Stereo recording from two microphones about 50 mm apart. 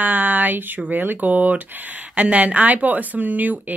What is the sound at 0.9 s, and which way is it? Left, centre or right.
Speech, right.